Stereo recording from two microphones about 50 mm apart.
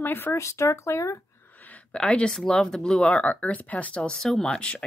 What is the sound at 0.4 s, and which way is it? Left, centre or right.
Speech, left.